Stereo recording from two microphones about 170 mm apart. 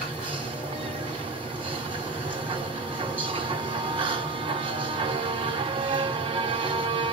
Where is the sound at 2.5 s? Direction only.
30° right (ahead or behind).